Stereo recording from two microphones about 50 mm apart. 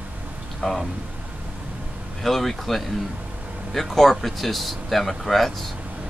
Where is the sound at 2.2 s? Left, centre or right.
Centre.